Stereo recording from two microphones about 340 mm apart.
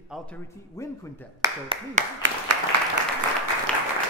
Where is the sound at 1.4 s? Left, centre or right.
Centre.